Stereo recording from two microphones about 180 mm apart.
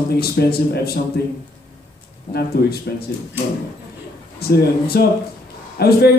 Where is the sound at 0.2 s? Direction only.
60° left (ahead or behind).